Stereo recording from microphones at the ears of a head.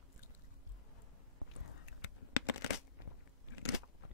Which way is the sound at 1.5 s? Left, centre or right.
Left.